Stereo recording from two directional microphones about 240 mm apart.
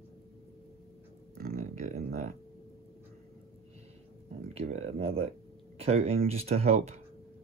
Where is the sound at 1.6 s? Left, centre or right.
Right.